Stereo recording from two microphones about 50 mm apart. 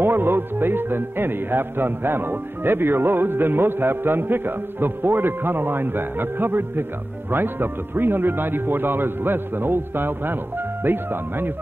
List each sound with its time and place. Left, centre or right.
0.0 s speech: right